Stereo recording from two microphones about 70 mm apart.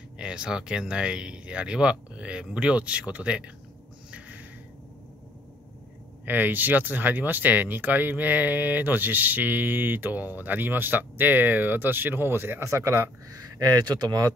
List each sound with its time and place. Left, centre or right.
0.2 s speech: centre
6.2 s speech: right
13.4 s speech: right